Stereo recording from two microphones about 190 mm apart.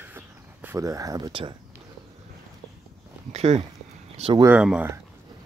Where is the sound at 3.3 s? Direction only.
35° right (ahead or behind).